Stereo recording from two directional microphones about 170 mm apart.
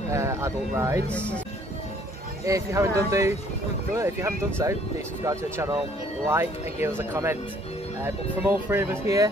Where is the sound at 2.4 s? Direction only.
20° right (ahead or behind).